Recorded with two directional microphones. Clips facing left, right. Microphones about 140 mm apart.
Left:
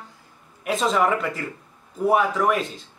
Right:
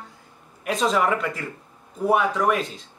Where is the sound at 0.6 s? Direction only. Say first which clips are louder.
Left 1 dB; centre (ahead or behind).